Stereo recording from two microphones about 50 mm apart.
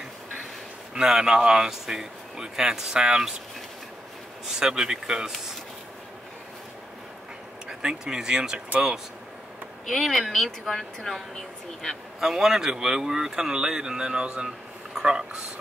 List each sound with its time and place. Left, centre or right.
0.9 s speech: centre
4.6 s speech: centre
7.6 s speech: centre
9.8 s a woman's voice: centre
12.2 s speech: centre